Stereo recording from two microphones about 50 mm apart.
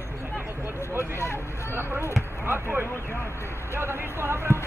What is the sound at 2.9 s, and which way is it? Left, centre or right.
Speech, left.